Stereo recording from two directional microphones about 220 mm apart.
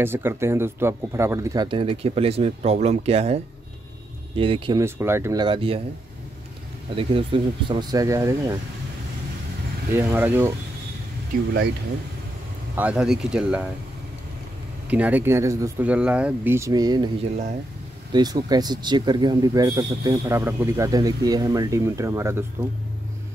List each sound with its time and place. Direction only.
0.0 s speech: 10° right (ahead or behind); by 3.3 s 30° right (ahead or behind)
4.4 s speech: 25° right (ahead or behind)
4.8 s speech: 10° right (ahead or behind)
7.0 s speech: 25° right (ahead or behind)
9.9 s speech: 10° right (ahead or behind)
12.7 s speech: 5° right (ahead or behind)
14.9 s speech: 5° right (ahead or behind)